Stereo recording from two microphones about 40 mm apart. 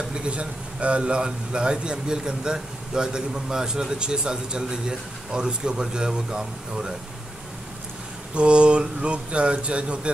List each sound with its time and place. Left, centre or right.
0.1 s a man's voice: right
8.4 s a man's voice: right